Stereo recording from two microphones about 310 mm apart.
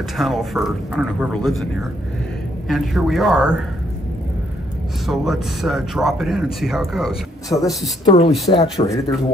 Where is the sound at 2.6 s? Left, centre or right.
Centre.